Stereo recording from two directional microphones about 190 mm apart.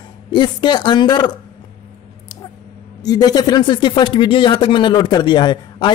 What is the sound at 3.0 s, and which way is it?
A man's voice, 20° left (ahead or behind).